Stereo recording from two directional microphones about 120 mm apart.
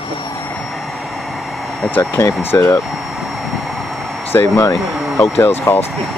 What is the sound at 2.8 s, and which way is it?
Vehicle, centre (ahead or behind).